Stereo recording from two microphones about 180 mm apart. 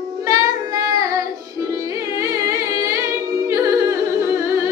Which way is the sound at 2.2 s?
15° right (ahead or behind).